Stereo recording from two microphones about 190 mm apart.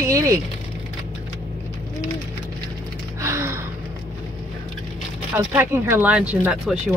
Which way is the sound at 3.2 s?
15° right (ahead or behind).